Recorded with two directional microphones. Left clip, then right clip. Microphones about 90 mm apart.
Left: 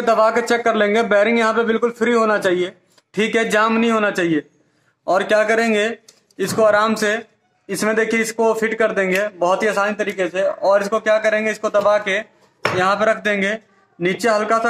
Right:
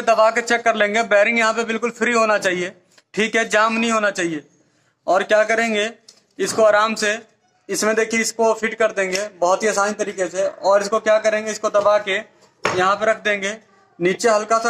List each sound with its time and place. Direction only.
0.0 s a man's voice: 30° left (ahead or behind)
7.7 s speech: 40° left (ahead or behind)
8.1 s a man's voice: 10° left (ahead or behind)
9.7 s speech: 35° left (ahead or behind)
11.1 s a man's voice: 15° left (ahead or behind)
14.0 s speech: 35° left (ahead or behind)
14.4 s speech: 10° left (ahead or behind)